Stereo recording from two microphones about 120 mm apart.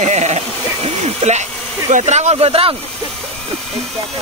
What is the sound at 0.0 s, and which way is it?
Speech, 75° right (ahead or behind).